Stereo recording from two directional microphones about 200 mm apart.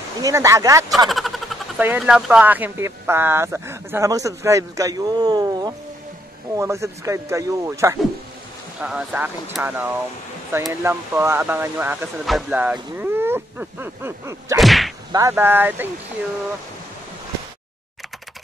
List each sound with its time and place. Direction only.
0.2 s speech: 15° right (ahead or behind)
1.0 s speech: centre (ahead or behind)
14.6 s whip: centre (ahead or behind)
15.1 s speech: 15° right (ahead or behind)